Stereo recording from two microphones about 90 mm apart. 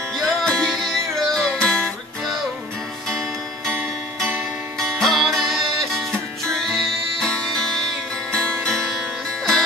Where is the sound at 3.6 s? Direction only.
20° right (ahead or behind).